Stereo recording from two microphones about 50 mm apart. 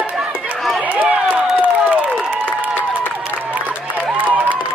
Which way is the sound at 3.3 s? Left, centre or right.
Right.